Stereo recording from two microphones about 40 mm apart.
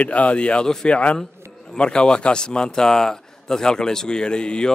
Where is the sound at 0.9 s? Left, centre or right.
Left.